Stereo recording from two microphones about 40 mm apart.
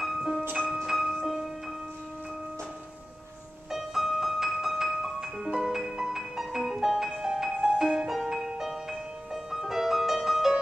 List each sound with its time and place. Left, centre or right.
0.4 s music: right
0.8 s music: centre
3.7 s music: centre
8.1 s music: centre